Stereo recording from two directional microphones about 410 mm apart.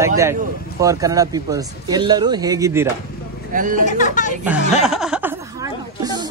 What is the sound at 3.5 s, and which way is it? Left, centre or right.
Speech, centre.